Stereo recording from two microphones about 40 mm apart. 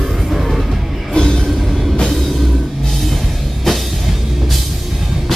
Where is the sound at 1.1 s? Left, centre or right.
Centre.